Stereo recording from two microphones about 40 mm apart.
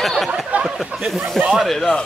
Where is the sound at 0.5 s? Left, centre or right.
Right.